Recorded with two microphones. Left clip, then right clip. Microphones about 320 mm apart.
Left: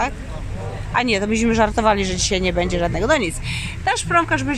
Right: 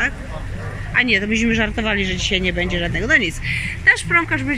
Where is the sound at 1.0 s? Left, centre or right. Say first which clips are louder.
Right 2 dB; centre.